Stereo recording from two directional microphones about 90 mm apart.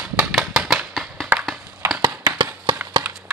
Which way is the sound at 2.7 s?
60° right (ahead or behind).